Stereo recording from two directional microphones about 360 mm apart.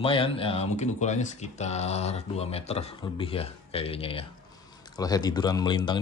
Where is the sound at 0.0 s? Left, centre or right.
Centre.